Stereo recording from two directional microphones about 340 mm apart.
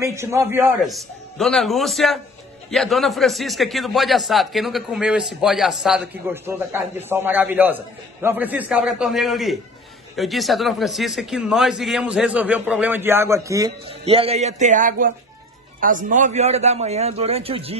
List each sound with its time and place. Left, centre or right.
0.0 s a man's voice: centre